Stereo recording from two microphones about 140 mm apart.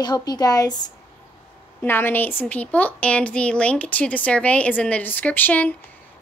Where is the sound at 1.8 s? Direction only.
15° left (ahead or behind).